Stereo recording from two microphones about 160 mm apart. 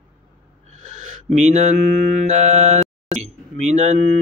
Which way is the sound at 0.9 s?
45° right (ahead or behind).